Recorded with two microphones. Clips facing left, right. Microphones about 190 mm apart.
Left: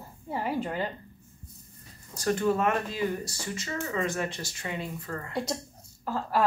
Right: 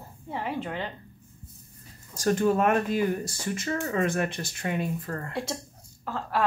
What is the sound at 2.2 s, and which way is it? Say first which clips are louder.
Speech: right 3 dB; 50° right (ahead or behind).